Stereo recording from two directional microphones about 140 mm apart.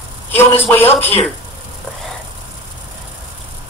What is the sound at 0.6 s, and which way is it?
Speech, 15° left (ahead or behind).